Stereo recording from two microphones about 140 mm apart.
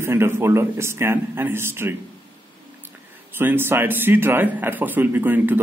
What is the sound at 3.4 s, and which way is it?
A man's voice, 15° right (ahead or behind).